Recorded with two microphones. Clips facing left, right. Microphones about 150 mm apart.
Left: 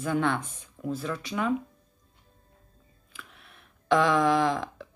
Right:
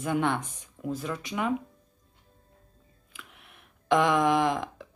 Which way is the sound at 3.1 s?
15° right (ahead or behind).